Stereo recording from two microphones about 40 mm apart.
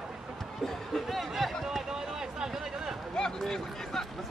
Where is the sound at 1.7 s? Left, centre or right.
Centre.